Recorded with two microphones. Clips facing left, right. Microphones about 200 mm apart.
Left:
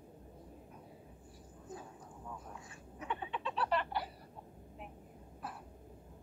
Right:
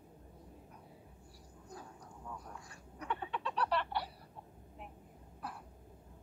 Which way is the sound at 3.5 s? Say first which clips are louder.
Even; centre (ahead or behind).